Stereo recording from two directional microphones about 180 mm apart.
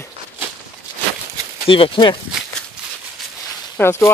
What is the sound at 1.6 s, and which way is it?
Speech, 30° left (ahead or behind).